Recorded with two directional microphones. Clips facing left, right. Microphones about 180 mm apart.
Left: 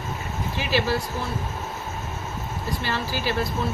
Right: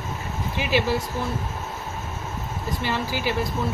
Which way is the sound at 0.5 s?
15° right (ahead or behind).